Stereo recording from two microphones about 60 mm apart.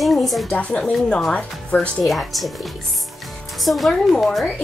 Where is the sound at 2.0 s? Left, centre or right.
Centre.